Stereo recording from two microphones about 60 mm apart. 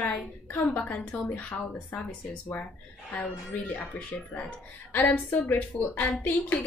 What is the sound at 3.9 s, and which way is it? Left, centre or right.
A woman's voice, left.